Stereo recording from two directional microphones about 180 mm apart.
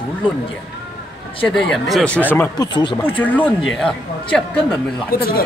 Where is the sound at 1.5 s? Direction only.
Centre (ahead or behind); by 3.0 s 25° left (ahead or behind).